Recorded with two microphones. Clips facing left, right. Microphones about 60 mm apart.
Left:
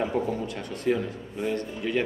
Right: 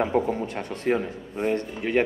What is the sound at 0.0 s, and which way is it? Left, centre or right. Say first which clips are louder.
A man's voice: right 3 dB; right.